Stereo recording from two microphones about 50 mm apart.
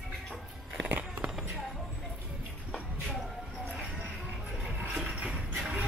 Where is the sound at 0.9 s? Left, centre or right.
Right.